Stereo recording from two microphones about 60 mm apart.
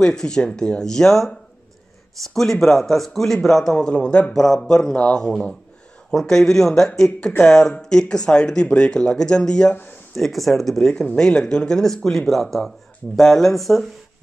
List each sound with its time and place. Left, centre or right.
0.0 s speech: centre
2.3 s speech: centre
3.7 s speech: centre